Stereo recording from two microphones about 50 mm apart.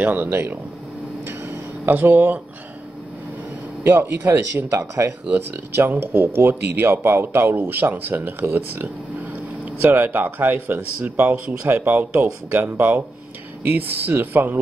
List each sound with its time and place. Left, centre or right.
0.0 s speech: right
1.5 s a sound: right
3.8 s speech: right
4.6 s speech: right
5.9 s speech: right